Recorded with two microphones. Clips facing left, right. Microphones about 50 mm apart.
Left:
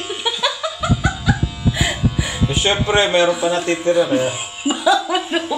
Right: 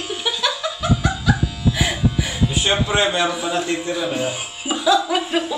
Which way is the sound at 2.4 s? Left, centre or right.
Left.